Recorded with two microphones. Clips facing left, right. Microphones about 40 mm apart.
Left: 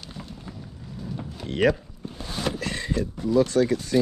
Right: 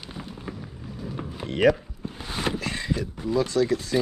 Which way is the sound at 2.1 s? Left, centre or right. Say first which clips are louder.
Right 1 dB; centre.